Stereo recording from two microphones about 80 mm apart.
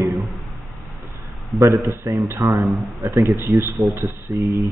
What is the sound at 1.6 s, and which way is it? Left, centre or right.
Speech, right.